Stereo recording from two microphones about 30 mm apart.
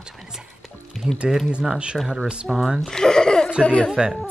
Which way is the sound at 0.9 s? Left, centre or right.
Centre.